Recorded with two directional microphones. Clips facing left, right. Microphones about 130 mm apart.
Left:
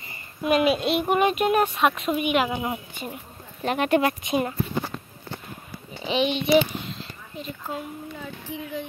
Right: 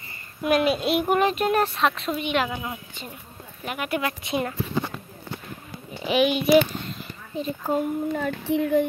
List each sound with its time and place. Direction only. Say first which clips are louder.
0.4 s speech: left 1 dB; centre (ahead or behind)
1.2 s speech: left 1 dB; 10° left (ahead or behind)
2.5 s speech: left 4 dB; 20° left (ahead or behind)
3.6 s speech: left 6 dB; 35° left (ahead or behind)
4.2 s speech: left 2 dB; 20° left (ahead or behind)
6.2 s speech: right 2 dB; 5° right (ahead or behind)
7.3 s speech: right 8 dB; 35° right (ahead or behind)
8.1 s speech: right 11 dB; 70° right (ahead or behind)